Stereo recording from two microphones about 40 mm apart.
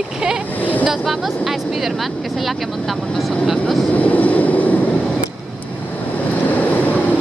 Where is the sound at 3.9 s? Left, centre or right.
Left.